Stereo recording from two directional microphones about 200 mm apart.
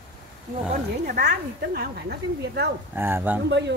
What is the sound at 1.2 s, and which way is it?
A woman's voice, 55° right (ahead or behind).